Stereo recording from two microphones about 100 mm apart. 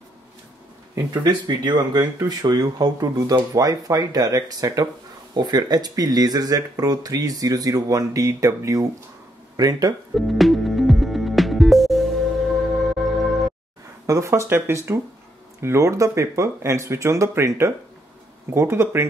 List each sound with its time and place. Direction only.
0.9 s speech: 45° right (ahead or behind)
10.1 s music: centre (ahead or behind)
14.0 s speech: 30° right (ahead or behind)